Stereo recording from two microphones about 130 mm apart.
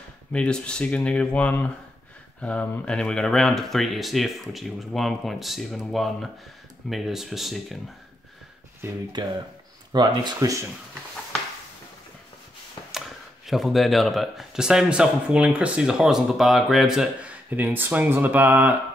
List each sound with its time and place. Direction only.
0.3 s a man's voice: 10° left (ahead or behind)
8.8 s speech: 20° right (ahead or behind)
9.9 s speech: 30° right (ahead or behind)
13.5 s a man's voice: centre (ahead or behind)